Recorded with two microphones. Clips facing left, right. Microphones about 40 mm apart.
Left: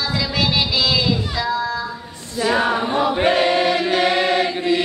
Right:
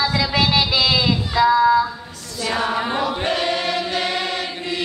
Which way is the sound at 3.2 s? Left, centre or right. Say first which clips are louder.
Left 5 dB; centre.